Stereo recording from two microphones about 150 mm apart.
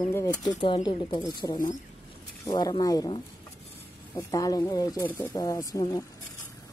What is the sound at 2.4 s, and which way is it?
Speech, 25° left (ahead or behind).